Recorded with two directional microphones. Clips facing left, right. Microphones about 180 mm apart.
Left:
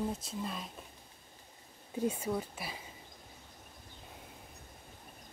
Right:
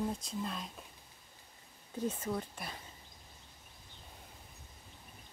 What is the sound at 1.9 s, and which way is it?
Speech, 10° left (ahead or behind).